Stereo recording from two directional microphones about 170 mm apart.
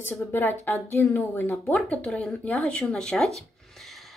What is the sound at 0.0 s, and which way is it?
A woman's voice, 10° left (ahead or behind).